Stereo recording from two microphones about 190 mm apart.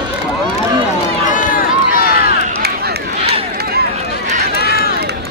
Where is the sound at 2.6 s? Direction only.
55° right (ahead or behind).